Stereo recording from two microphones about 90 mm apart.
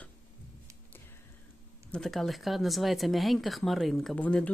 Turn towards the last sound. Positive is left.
turn(degrees=10)  # may be behind; listen again after turning